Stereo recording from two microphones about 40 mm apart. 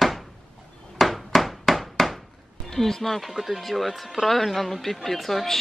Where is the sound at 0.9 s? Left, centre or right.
Centre.